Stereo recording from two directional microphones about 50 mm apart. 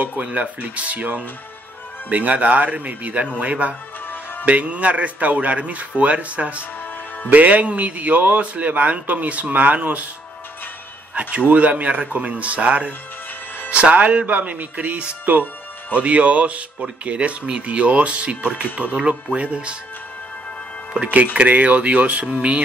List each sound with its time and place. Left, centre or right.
0.0 s speech: right
4.0 s music: left
4.5 s a man's voice: right
11.1 s a man's voice: right
21.1 s speech: right